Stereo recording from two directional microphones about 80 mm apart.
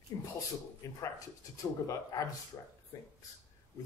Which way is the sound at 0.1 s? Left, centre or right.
Left.